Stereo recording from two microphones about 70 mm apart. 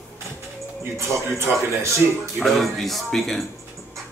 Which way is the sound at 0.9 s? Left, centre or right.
Right.